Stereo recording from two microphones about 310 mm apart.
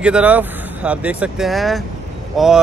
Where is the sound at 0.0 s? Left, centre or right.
Centre.